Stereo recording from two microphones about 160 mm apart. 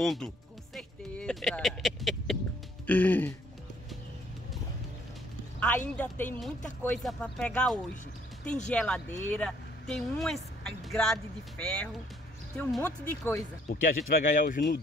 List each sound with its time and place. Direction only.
0.0 s speech: centre (ahead or behind)
0.7 s a sound: 5° left (ahead or behind)
2.9 s speech: 10° left (ahead or behind)
5.9 s speech: 10° left (ahead or behind)
13.7 s speech: 60° left (ahead or behind)